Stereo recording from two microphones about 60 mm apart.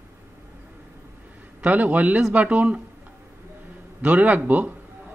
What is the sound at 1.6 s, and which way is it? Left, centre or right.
A man's voice, right.